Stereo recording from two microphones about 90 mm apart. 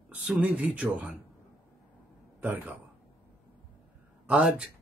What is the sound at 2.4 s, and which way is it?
Speech, 20° right (ahead or behind).